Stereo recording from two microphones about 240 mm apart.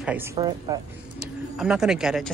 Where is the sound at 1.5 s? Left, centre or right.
Centre.